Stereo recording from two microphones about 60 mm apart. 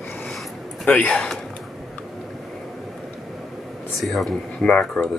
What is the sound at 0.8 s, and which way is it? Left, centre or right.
Speech, centre.